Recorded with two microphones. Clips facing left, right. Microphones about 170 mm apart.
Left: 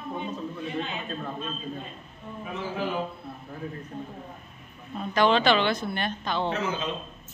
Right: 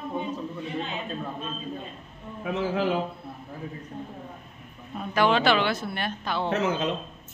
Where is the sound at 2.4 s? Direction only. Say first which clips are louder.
Right 5 dB; 80° right.